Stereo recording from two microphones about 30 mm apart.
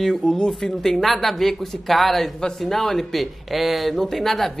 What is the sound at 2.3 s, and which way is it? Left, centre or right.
Speech, centre.